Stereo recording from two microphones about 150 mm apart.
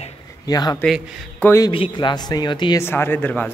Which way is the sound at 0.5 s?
25° left (ahead or behind).